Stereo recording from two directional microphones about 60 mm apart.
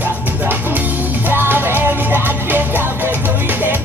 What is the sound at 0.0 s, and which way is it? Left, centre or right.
Music, right.